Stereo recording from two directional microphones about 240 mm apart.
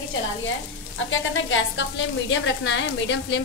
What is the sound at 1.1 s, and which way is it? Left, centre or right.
A woman's voice, left.